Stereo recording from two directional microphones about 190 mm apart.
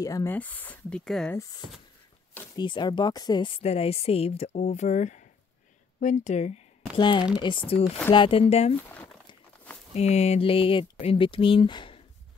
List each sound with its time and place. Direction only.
0.0 s speech: 15° left (ahead or behind)
1.3 s speech: 15° left (ahead or behind); by 6.6 s 35° left (ahead or behind)
7.0 s speech: 25° left (ahead or behind)
8.8 s a sound: 10° left (ahead or behind)
9.9 s speech: 35° left (ahead or behind)